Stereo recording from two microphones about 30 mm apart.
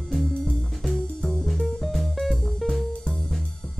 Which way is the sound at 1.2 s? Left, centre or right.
Left.